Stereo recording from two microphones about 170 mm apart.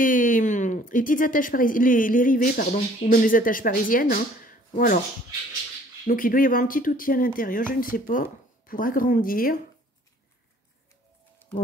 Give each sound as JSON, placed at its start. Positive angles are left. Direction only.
{"t": 0.0, "sound": "speech", "side_deg": 50}
{"t": 6.0, "sound": "speech", "side_deg": 55}